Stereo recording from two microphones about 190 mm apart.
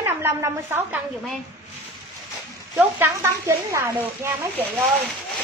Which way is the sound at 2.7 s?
10° right (ahead or behind).